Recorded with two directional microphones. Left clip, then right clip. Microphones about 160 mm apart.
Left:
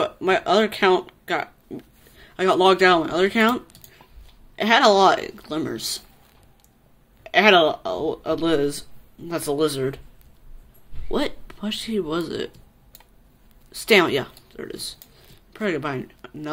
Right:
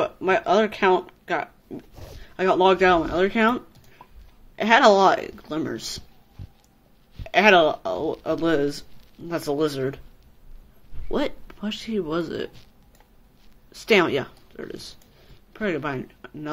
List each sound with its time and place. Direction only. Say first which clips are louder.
0.0 s speech: left 1 dB; 15° left (ahead or behind)
7.2 s speech: left 1 dB; 10° left (ahead or behind)
11.1 s speech: left 1 dB; 10° left (ahead or behind)
13.7 s speech: left 2 dB; 10° left (ahead or behind)